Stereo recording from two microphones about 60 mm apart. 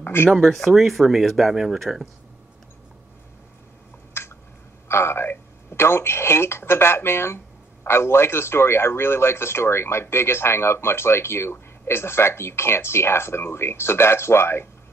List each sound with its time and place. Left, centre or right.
0.0 s speech: left
0.3 s speech: centre
4.2 s a sound: left
4.8 s a man's voice: left